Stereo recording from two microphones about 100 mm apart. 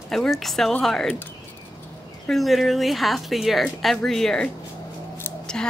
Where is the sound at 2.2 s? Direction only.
Centre (ahead or behind).